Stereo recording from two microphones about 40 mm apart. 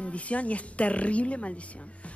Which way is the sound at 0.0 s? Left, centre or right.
Left.